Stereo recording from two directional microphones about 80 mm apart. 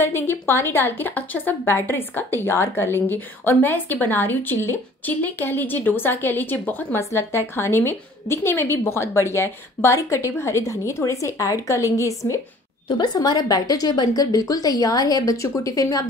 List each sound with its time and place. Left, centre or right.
0.0 s a woman's voice: left
12.8 s a woman's voice: left